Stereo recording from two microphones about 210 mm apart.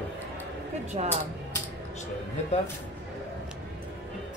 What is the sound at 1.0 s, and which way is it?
Speech, 30° right (ahead or behind).